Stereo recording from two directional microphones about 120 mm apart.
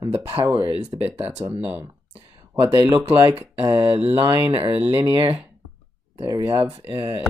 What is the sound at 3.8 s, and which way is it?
Speech, 55° right (ahead or behind).